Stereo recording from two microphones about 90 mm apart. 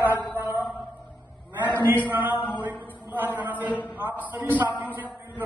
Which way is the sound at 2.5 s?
20° right (ahead or behind).